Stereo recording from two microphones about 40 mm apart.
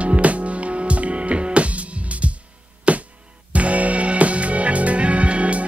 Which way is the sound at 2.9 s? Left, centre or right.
Right.